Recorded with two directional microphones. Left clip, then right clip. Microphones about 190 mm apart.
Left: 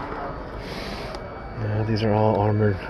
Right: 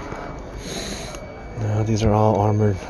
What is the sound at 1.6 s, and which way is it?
Speech, 20° right (ahead or behind).